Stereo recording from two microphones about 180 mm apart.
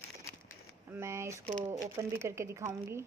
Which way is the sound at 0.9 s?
15° right (ahead or behind).